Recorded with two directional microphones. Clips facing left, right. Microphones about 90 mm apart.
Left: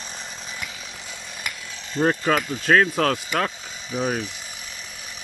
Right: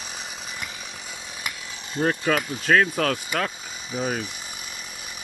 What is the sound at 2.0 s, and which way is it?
Speech, 20° left (ahead or behind).